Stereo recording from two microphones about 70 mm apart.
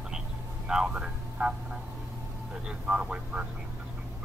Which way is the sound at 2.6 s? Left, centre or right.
Centre.